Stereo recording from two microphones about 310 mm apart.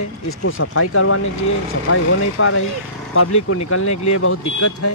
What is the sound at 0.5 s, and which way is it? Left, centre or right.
Speech, left.